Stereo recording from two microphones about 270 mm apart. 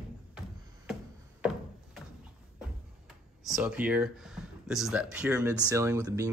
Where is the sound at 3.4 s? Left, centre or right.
Centre.